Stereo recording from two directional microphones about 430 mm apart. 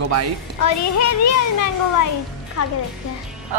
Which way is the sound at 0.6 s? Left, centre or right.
Left.